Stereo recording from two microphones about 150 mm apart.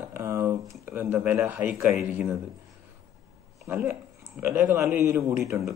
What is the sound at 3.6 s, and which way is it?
Speech, 10° right (ahead or behind).